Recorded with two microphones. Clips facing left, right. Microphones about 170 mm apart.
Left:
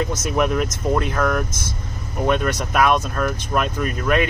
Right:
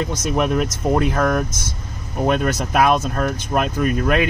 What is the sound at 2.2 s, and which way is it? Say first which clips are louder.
Speech: right 1 dB; 35° right (ahead or behind).